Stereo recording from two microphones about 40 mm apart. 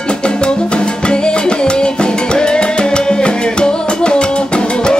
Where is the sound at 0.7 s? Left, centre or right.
Left.